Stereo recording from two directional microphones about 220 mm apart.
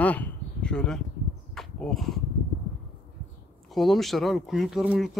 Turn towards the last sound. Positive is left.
turn(degrees=-5)  # may be behind; listen again after turning